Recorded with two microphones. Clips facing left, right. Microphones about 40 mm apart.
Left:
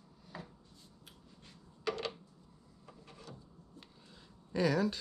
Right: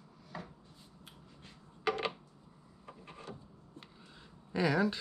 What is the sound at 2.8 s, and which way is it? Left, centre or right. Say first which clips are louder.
Wood: right 5 dB; right.